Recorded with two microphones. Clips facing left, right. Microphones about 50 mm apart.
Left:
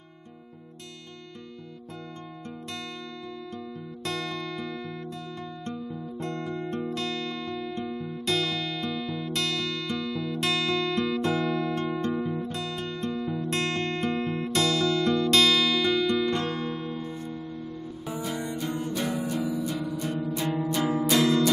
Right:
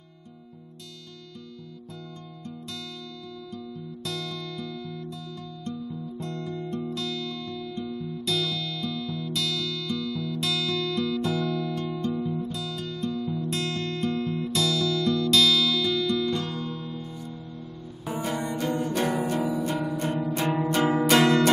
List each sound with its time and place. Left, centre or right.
4.0 s music: left
5.7 s guitar: left
9.3 s music: left
10.4 s music: left
11.7 s music: left
13.5 s music: left
18.1 s music: right